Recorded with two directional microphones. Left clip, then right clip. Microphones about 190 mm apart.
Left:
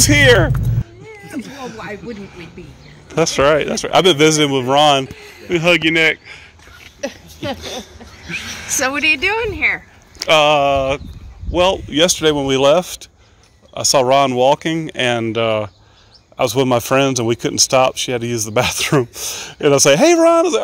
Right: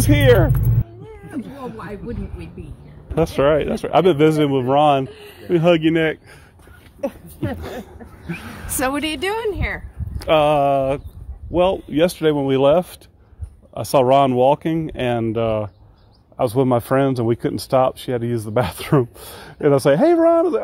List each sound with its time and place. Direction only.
0.0 s speech: centre (ahead or behind)
1.3 s a sound: centre (ahead or behind)
3.2 s speech: 5° right (ahead or behind)
5.5 s a man's voice: 30° right (ahead or behind)
7.0 s a sound: 40° right (ahead or behind)
8.3 s a man's voice: 30° right (ahead or behind)
8.7 s a woman's voice: 60° right (ahead or behind)
10.1 s speech: 15° right (ahead or behind); by 20.6 s 5° left (ahead or behind)